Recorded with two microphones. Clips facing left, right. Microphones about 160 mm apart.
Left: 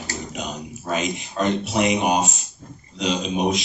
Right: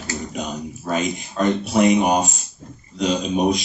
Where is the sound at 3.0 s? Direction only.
45° right (ahead or behind).